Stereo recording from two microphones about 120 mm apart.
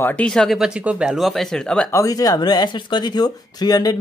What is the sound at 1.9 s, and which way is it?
Speech, 30° left (ahead or behind).